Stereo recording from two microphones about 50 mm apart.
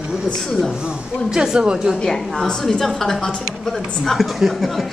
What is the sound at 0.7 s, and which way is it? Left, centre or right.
Speech, centre.